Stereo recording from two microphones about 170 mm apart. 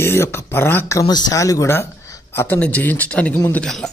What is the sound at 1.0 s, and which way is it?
Speech, 25° left (ahead or behind).